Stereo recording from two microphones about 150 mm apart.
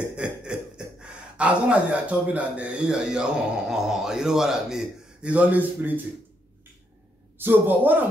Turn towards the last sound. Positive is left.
turn(degrees=-15)  # may be behind; listen again after turning